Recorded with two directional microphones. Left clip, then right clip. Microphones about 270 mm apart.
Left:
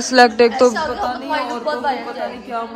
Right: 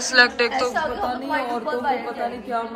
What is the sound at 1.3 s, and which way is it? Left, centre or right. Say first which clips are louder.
Speech: left 3 dB; left.